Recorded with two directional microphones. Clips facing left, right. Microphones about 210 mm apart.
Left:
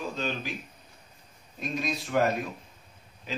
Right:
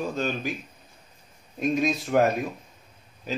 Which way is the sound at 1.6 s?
50° right (ahead or behind).